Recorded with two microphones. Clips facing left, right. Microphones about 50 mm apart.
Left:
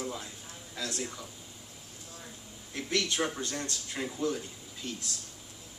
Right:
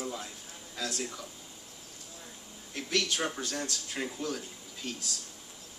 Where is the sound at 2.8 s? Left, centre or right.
Left.